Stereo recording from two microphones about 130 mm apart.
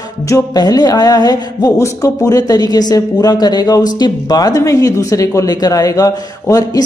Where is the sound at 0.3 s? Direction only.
30° left (ahead or behind).